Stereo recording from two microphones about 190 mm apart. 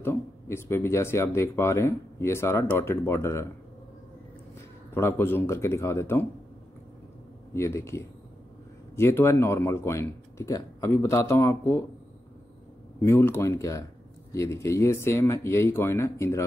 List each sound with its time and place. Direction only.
0.0 s speech: 10° left (ahead or behind)
4.9 s speech: 10° left (ahead or behind)
7.5 s speech: 15° left (ahead or behind)
13.0 s speech: 10° left (ahead or behind)